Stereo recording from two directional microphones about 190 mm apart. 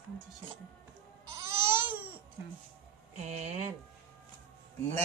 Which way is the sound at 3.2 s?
35° right (ahead or behind).